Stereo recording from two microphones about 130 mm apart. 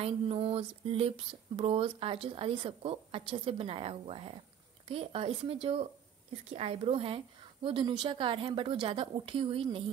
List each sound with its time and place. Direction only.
0.0 s speech: 50° right (ahead or behind)